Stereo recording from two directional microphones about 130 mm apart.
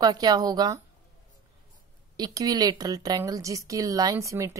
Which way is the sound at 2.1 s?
30° right (ahead or behind).